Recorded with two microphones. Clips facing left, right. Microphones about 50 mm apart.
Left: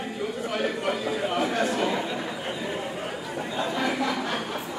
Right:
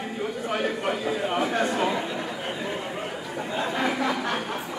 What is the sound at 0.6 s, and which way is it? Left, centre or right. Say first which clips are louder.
Speech: even; centre.